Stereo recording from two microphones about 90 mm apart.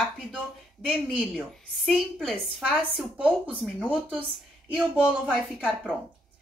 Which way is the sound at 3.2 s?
15° right (ahead or behind).